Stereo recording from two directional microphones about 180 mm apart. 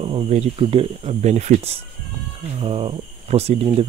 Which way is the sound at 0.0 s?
30° right (ahead or behind).